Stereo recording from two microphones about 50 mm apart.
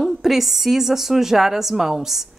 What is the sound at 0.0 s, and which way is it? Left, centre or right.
A woman's voice, centre.